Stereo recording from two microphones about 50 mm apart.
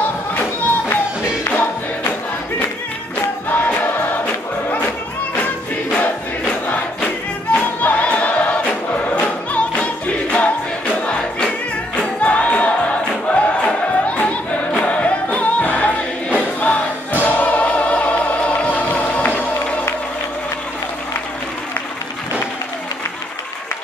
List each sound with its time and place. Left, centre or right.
0.0 s music: left
3.4 s music: left
7.5 s choir: left
11.1 s music: left